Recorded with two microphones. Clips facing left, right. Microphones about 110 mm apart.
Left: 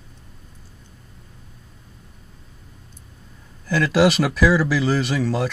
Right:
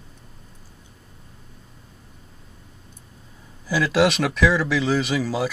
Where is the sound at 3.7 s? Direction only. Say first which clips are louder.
Left 2 dB; centre (ahead or behind).